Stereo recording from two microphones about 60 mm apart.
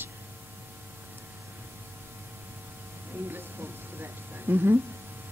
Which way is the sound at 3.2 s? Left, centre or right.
Right.